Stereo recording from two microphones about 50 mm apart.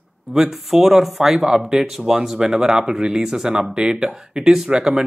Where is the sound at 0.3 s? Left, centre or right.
Centre.